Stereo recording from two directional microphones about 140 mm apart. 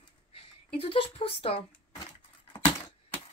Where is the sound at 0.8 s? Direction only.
40° left (ahead or behind).